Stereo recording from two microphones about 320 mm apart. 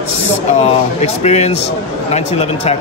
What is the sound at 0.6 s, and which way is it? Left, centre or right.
Speech, centre.